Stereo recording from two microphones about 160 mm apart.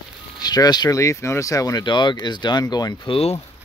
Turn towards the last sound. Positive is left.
turn(degrees=40)  # may be behind; listen again after turning